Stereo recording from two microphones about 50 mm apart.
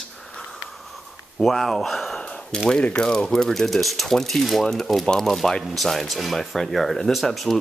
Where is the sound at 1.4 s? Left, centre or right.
Centre.